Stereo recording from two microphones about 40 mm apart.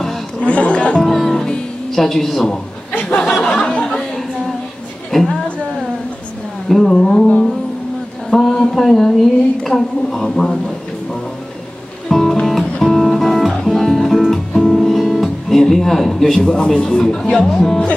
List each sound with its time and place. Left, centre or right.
0.4 s speech: left
1.0 s music: centre
1.9 s a woman's voice: centre
2.9 s speech: left
3.3 s speech: centre
3.6 s a sound: left
5.1 s a woman's voice: centre
6.9 s a woman's voice: centre
8.3 s a woman's voice: centre
12.1 s music: centre
16.4 s speech: left
17.6 s speech: left